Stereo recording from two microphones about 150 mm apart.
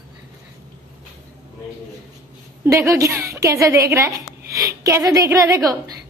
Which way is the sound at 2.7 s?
20° right (ahead or behind).